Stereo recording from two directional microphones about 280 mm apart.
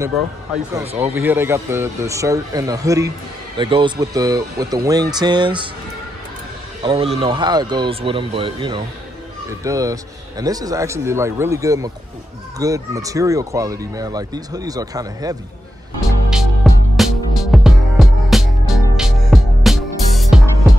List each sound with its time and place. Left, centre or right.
0.0 s speech: centre
6.8 s speech: centre
16.3 s music: centre